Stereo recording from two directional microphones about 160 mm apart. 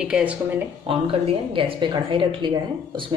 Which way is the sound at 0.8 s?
35° right (ahead or behind).